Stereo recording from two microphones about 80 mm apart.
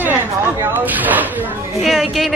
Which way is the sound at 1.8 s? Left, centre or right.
Centre.